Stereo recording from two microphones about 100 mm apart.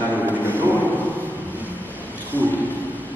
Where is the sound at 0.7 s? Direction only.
15° left (ahead or behind).